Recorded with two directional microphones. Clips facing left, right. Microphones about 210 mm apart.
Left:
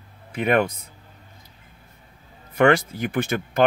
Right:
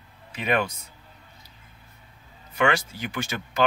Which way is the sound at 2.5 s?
55° left (ahead or behind).